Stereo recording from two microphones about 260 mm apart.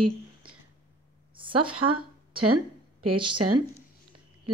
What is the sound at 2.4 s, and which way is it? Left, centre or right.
Speech, right.